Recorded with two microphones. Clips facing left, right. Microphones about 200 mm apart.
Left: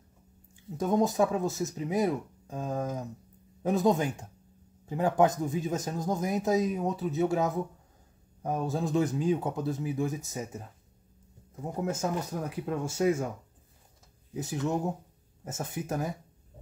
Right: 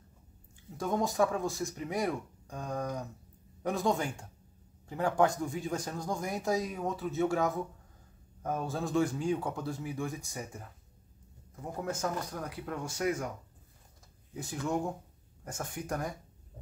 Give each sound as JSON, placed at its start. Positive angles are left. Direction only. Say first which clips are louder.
{"t": 0.7, "sound": "speech", "louder": "left 4 dB", "side_deg": 20}
{"t": 14.3, "sound": "speech", "louder": "left 3 dB", "side_deg": 20}